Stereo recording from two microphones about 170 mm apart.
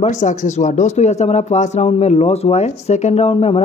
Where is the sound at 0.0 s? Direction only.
45° left (ahead or behind).